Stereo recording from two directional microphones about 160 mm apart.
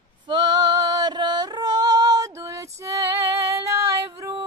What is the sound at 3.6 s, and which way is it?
Female singing, 15° right (ahead or behind).